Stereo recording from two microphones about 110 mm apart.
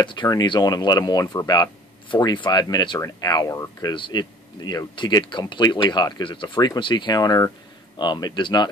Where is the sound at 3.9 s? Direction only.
45° left (ahead or behind).